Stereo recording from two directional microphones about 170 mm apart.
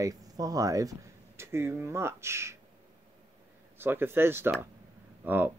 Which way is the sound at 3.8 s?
10° right (ahead or behind).